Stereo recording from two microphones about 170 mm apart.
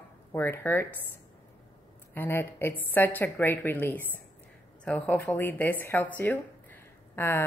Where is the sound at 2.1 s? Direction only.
10° left (ahead or behind).